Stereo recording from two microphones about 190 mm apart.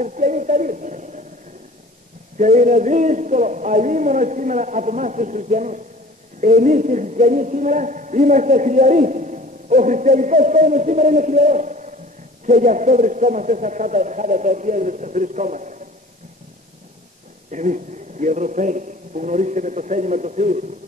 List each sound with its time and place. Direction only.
0.0 s a sound: 40° right (ahead or behind)
2.3 s a man's voice: 40° right (ahead or behind)
17.5 s a man's voice: 40° right (ahead or behind)